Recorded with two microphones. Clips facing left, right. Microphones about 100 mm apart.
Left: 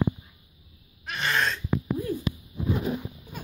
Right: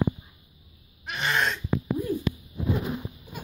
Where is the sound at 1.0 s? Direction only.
15° right (ahead or behind).